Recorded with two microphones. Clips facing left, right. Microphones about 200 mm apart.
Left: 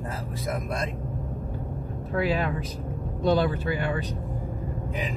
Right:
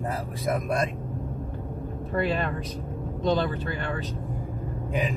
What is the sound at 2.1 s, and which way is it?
Speech, centre (ahead or behind).